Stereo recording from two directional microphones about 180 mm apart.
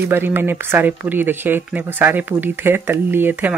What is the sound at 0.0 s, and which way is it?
Speech, 10° right (ahead or behind).